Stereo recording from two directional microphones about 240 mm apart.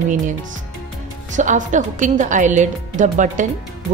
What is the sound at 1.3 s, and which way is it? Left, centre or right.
Speech, right.